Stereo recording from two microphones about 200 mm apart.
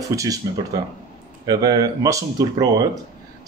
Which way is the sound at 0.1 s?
15° right (ahead or behind).